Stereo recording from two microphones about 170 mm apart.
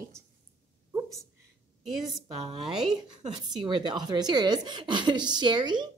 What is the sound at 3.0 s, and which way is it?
A woman's voice, 25° right (ahead or behind).